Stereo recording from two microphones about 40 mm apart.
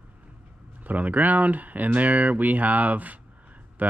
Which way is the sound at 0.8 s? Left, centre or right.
Right.